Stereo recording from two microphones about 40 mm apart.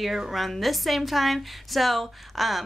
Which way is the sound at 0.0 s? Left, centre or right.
Centre.